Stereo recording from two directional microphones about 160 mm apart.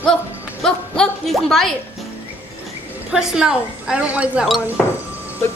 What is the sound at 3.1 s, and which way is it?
Speech, 5° right (ahead or behind).